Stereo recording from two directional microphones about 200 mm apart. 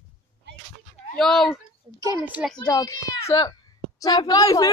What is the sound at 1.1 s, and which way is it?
Speech, centre (ahead or behind).